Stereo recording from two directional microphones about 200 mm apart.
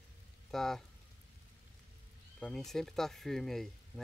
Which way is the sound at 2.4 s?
Centre (ahead or behind).